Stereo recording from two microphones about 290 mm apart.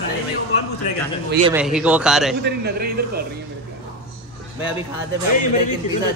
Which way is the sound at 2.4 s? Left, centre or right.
Right.